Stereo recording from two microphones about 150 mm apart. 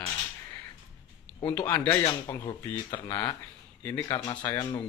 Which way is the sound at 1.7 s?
20° left (ahead or behind).